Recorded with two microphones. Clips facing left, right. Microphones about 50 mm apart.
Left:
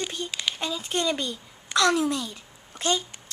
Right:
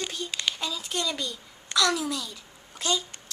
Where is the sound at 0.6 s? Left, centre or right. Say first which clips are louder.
Left 4 dB; left.